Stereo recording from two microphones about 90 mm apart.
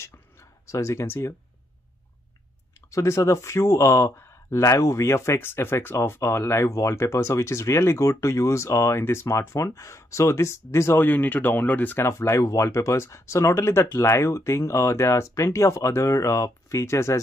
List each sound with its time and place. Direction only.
0.0 s a sound: 30° left (ahead or behind)
2.9 s speech: 35° left (ahead or behind)
12.1 s speech: 30° left (ahead or behind)